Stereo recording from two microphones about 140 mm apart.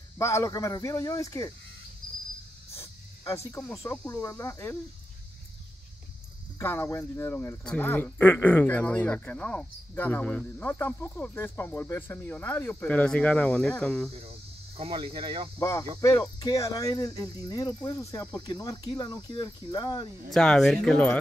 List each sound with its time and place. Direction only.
0.2 s speech: 20° left (ahead or behind)
2.7 s snake: 20° left (ahead or behind)
3.9 s speech: 20° left (ahead or behind)
6.6 s speech: 15° left (ahead or behind)
14.8 s speech: 40° right (ahead or behind)
16.0 s speech: 25° left (ahead or behind)
20.2 s speech: 5° left (ahead or behind)